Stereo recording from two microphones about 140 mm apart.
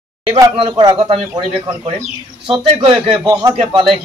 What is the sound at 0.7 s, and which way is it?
Speech, 25° right (ahead or behind).